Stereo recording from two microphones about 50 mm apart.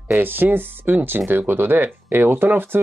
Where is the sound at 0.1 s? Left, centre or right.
Right.